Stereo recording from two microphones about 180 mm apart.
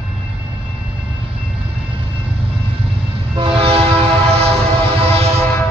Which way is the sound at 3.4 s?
30° right (ahead or behind).